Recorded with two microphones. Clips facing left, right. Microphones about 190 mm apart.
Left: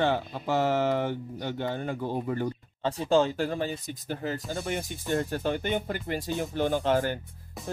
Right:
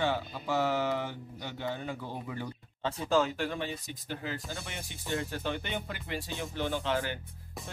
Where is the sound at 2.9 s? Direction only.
30° left (ahead or behind).